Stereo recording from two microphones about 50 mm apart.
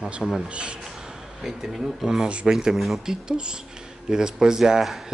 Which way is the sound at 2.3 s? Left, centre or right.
Right.